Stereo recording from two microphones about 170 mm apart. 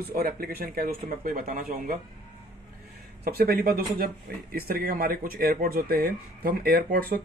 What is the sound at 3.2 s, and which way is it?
Speech, 65° right (ahead or behind).